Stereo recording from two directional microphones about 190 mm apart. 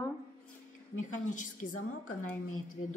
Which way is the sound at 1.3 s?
40° left (ahead or behind).